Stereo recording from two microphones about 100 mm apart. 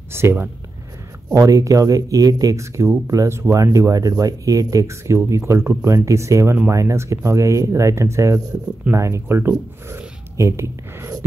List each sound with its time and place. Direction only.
0.1 s speech: 25° right (ahead or behind)